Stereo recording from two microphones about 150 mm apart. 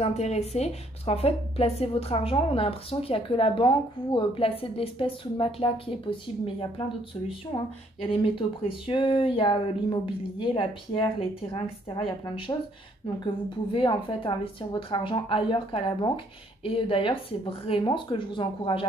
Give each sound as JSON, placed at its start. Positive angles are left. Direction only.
{"t": 0.0, "sound": "a woman's voice", "side_deg": 45}